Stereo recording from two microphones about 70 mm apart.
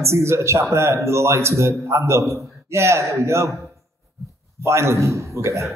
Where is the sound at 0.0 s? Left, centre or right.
Right.